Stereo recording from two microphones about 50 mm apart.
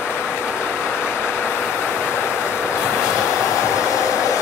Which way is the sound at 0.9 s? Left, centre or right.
Left.